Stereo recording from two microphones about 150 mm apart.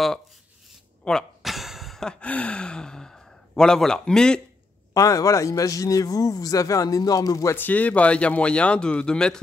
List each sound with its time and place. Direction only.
1.0 s speech: centre (ahead or behind)
4.9 s speech: 20° left (ahead or behind); by 9.4 s 5° left (ahead or behind)